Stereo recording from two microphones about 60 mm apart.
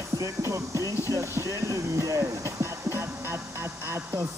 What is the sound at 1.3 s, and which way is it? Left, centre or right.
Speech, right.